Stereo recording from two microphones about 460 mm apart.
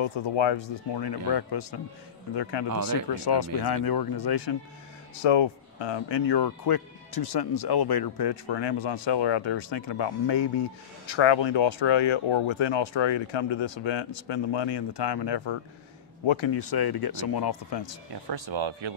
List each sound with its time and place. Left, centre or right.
0.0 s speech: left
5.2 s speech: left
11.1 s speech: left
16.3 s speech: left
16.6 s speech: left
18.3 s speech: right